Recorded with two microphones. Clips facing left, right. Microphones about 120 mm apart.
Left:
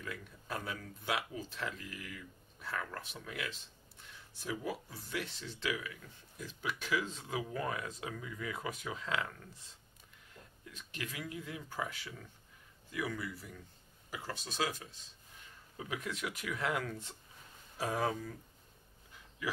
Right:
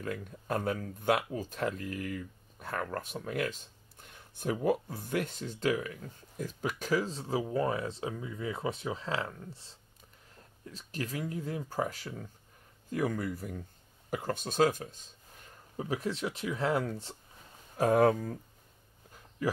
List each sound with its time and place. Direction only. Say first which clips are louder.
0.0 s speech: right 8 dB; 45° right (ahead or behind); by 17.2 s 30° right (ahead or behind)
17.7 s speech: right 10 dB; 55° right (ahead or behind)
19.4 s a sound: right 7 dB; 40° right (ahead or behind)